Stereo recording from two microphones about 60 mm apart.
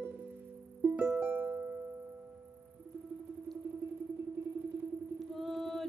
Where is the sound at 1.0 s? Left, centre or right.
Right.